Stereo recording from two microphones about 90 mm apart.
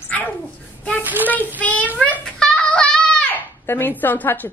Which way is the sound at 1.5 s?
20° left (ahead or behind).